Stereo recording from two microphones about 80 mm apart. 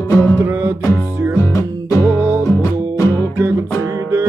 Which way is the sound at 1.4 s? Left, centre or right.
Left.